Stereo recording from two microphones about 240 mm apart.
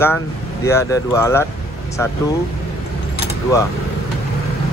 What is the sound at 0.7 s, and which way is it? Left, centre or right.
Speech, centre.